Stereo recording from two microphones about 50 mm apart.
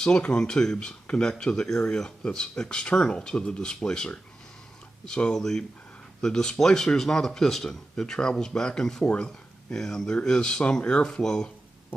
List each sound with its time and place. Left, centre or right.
0.0 s speech: centre